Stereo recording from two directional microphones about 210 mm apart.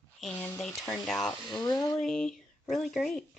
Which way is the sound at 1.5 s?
20° left (ahead or behind).